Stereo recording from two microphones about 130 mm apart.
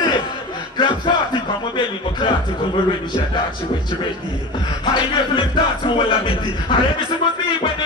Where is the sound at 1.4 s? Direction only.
35° left (ahead or behind).